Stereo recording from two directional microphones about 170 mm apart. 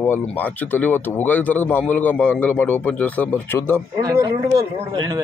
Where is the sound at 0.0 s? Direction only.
10° left (ahead or behind).